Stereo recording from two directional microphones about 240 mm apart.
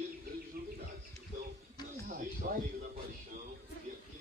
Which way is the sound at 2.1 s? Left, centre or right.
Right.